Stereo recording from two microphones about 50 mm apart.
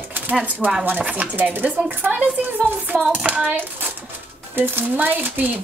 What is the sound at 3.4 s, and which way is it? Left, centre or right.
A child's voice, right.